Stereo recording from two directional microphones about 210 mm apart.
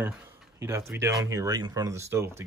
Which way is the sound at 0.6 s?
10° right (ahead or behind).